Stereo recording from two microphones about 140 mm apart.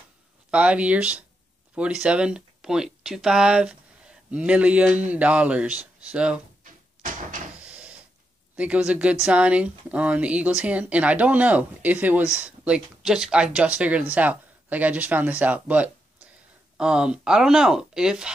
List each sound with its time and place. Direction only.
0.5 s speech: 10° right (ahead or behind)
6.6 s door: 70° right (ahead or behind)
7.6 s a sound: 10° right (ahead or behind)
8.5 s speech: 10° right (ahead or behind)